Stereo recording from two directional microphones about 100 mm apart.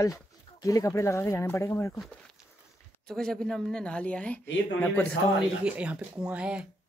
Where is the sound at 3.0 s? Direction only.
5° left (ahead or behind).